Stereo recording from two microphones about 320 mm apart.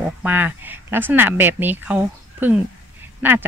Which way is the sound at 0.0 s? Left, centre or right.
Centre.